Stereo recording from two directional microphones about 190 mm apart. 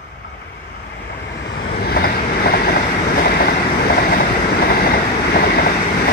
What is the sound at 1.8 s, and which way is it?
Vehicle, 55° left (ahead or behind).